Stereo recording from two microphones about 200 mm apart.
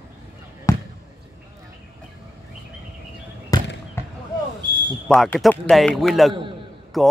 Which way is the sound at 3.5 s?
20° left (ahead or behind).